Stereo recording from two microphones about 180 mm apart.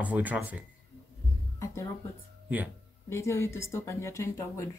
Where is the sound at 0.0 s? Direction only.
10° right (ahead or behind).